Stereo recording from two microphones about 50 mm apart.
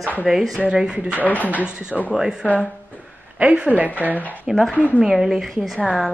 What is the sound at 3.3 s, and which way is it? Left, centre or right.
Speech, right.